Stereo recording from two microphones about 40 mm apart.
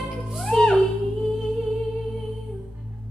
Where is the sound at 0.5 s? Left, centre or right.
Centre.